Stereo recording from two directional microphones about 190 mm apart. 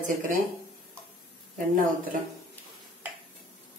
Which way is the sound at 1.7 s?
45° right (ahead or behind).